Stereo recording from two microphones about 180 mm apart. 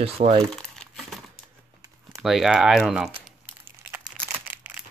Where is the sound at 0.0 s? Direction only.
30° right (ahead or behind).